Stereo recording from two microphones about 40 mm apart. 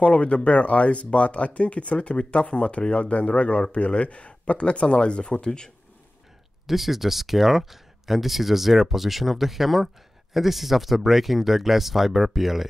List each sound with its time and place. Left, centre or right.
0.0 s speech: left
6.7 s speech: centre